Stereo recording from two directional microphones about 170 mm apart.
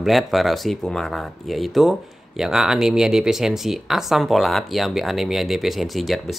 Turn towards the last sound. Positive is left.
turn(degrees=0)  # may be behind; listen again after turning